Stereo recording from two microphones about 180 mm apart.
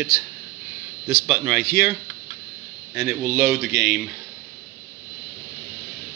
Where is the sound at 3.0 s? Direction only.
5° right (ahead or behind).